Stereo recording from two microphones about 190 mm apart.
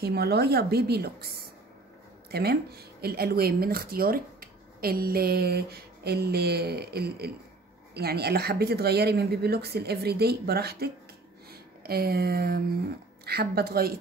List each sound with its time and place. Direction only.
0.0 s speech: 55° right (ahead or behind)
11.8 s a sound: 55° right (ahead or behind)
13.2 s speech: 55° right (ahead or behind)